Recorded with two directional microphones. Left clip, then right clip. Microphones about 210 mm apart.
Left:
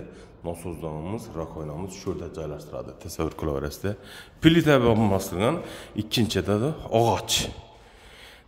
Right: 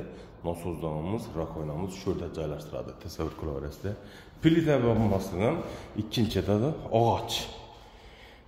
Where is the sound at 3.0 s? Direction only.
35° left (ahead or behind).